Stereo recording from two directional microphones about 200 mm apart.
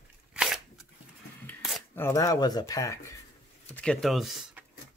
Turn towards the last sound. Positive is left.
turn(degrees=0)  # may be behind; listen again after turning